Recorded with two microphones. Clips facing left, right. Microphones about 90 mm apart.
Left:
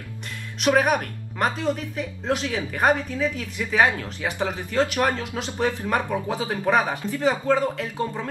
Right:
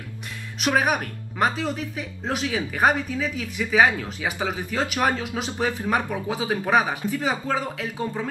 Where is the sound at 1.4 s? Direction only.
5° right (ahead or behind).